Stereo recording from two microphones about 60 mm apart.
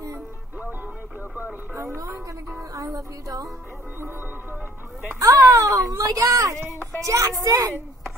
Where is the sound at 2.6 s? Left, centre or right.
Right.